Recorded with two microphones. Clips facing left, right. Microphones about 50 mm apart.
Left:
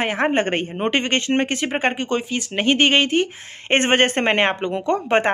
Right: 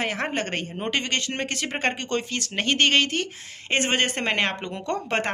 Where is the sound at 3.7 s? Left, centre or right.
Left.